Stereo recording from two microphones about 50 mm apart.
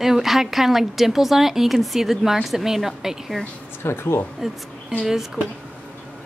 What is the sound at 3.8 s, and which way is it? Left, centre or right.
Speech, left.